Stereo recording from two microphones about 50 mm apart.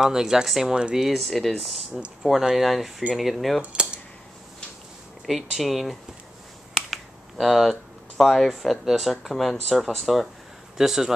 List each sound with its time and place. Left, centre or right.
0.0 s speech: centre
5.2 s speech: centre
6.7 s finger snapping: centre
8.2 s speech: centre